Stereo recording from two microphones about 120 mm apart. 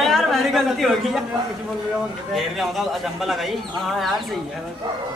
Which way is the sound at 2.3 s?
Centre (ahead or behind).